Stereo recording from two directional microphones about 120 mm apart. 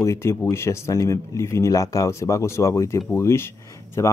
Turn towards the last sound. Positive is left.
turn(degrees=25)  # may be behind; listen again after turning